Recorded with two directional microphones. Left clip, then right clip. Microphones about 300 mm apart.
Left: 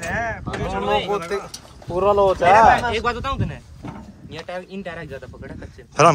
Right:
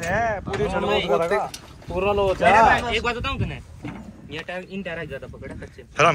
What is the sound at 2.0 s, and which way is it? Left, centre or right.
Speech, centre.